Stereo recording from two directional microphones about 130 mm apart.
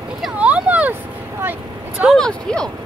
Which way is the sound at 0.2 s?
10° right (ahead or behind).